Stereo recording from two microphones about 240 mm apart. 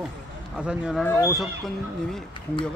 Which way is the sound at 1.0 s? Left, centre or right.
Centre.